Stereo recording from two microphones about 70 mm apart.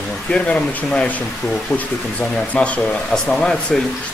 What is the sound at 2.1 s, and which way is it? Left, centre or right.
Speech, centre.